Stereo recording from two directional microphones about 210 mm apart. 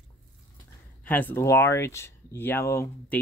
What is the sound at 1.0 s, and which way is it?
Speech, 10° left (ahead or behind).